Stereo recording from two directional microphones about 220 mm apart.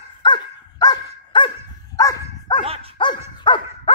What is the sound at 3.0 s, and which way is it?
Dog, 20° left (ahead or behind).